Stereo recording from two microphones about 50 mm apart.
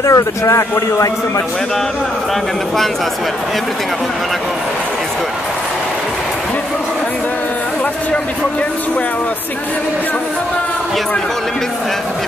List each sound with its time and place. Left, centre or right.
0.0 s speech: left